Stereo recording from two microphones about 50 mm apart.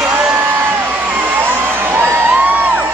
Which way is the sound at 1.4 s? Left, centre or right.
Right.